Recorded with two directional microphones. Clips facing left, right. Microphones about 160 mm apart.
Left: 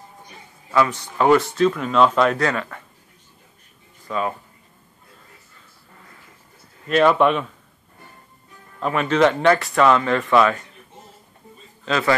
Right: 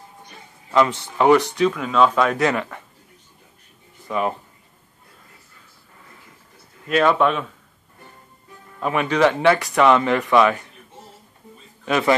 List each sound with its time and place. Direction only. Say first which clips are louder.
0.7 s speech: right 1 dB; 25° right (ahead or behind)
1.6 s speech: left 1 dB; centre (ahead or behind)
2.3 s speech: right 2 dB; 15° right (ahead or behind)
4.1 s speech: right 2 dB; 15° right (ahead or behind)
6.9 s speech: left 2 dB; centre (ahead or behind)
8.7 s speech: left 1 dB; 10° right (ahead or behind)
11.8 s a man's voice: right 2 dB; 15° right (ahead or behind)